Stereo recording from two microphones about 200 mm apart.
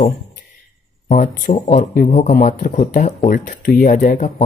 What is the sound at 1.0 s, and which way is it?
Speech, 40° left (ahead or behind).